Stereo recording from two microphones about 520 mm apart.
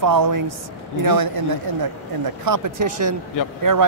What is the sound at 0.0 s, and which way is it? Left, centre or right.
Speech, right.